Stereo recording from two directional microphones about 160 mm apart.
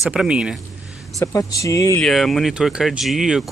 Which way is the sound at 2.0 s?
Centre (ahead or behind).